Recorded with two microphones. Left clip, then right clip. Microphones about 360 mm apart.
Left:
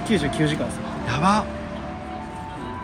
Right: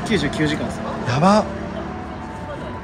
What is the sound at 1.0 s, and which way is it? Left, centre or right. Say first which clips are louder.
Speech: right 4 dB; centre.